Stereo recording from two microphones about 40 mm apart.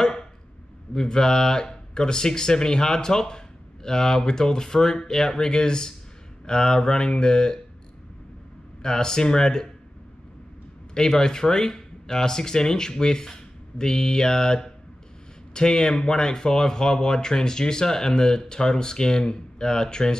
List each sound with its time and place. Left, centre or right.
0.0 s a sound: centre
0.9 s speech: centre
8.8 s speech: centre
11.0 s speech: centre